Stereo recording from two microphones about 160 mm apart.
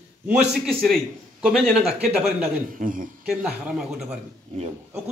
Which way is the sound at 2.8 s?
55° right (ahead or behind).